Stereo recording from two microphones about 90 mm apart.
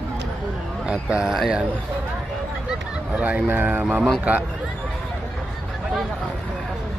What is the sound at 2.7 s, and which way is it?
Speech, 15° right (ahead or behind).